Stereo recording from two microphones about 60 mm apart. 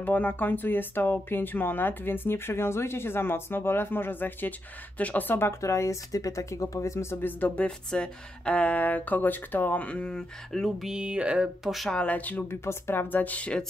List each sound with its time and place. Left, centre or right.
0.0 s speech: left
5.3 s speech: left
5.6 s speech: left
9.8 s speech: centre
10.8 s speech: centre
11.6 s speech: centre
11.9 s speech: left
12.4 s speech: left
13.1 s speech: left